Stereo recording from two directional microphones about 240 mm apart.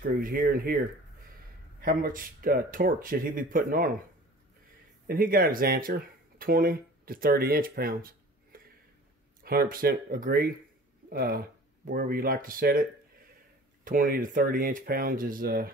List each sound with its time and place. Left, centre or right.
0.0 s speech: right
1.8 s speech: right
5.0 s speech: right
13.8 s speech: right